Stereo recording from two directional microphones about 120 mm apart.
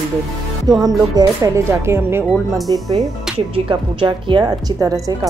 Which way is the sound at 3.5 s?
45° right (ahead or behind).